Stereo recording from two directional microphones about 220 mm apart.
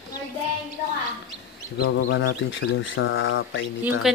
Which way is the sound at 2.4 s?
60° left (ahead or behind).